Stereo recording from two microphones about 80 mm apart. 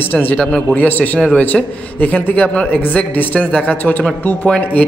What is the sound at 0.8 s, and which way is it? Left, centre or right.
Speech, left.